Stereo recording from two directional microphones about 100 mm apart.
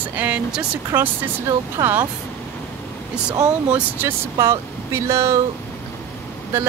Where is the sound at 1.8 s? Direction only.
55° right (ahead or behind).